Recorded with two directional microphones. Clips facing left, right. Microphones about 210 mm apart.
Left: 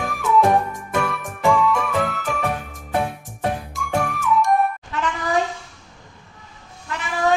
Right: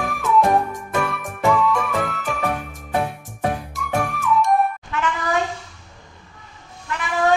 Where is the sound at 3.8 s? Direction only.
Centre (ahead or behind).